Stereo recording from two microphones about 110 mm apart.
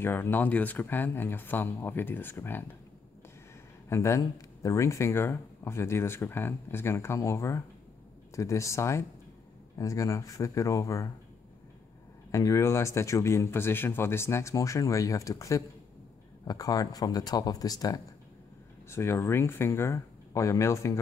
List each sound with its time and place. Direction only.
0.0 s speech: 20° left (ahead or behind)
3.9 s speech: 25° left (ahead or behind)
12.3 s speech: 30° left (ahead or behind)